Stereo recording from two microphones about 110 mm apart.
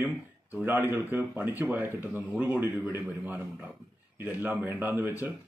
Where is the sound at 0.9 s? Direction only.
20° right (ahead or behind).